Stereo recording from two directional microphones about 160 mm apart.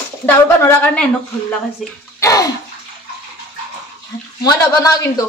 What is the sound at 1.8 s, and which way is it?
Speech, centre (ahead or behind).